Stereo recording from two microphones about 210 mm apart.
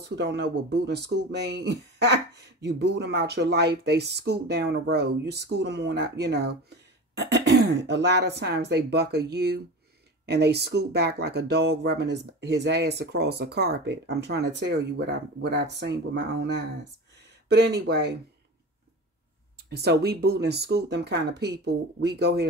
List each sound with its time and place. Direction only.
0.1 s speech: 55° right (ahead or behind)
17.2 s speech: 50° right (ahead or behind)
19.7 s speech: 50° right (ahead or behind)